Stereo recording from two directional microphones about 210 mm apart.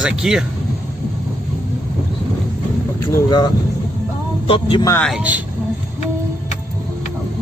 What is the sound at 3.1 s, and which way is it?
Speech, 20° left (ahead or behind).